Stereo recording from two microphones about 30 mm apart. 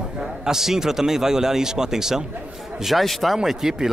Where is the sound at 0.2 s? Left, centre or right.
Centre.